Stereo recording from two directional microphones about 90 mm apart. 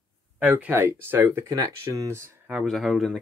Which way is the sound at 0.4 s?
20° right (ahead or behind).